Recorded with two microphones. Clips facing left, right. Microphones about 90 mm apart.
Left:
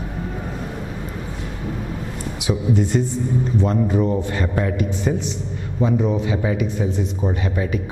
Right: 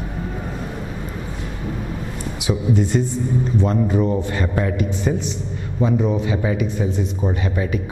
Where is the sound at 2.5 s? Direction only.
10° right (ahead or behind).